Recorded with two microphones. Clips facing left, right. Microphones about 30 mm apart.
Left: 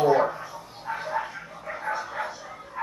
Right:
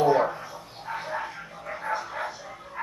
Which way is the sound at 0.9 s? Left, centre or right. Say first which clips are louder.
Left 2 dB; centre.